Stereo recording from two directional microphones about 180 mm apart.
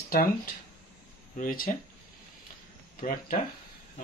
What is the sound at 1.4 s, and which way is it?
Speech, 50° left (ahead or behind).